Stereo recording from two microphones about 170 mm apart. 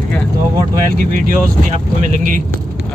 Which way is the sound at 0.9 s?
55° right (ahead or behind).